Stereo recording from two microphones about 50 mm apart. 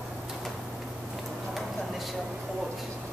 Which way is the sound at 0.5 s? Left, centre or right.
Centre.